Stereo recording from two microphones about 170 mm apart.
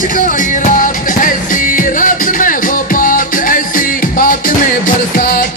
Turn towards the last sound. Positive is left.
turn(degrees=55)  # may be behind; listen again after turning